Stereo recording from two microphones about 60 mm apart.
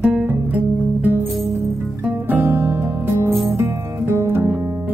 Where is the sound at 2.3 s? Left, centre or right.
Right.